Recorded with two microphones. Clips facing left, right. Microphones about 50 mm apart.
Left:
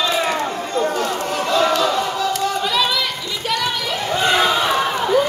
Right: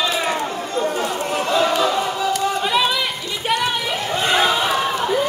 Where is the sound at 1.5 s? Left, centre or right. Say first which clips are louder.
Left 1 dB; centre.